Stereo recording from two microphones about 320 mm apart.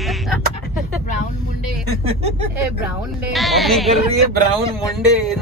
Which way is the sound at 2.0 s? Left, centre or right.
Centre.